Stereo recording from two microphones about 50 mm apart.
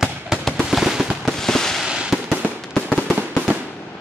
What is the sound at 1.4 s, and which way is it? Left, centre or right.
Fireworks, centre.